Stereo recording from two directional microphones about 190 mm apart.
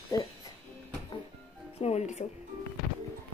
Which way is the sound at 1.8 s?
35° left (ahead or behind).